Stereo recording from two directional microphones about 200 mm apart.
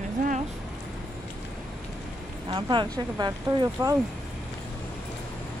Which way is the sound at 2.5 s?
25° right (ahead or behind).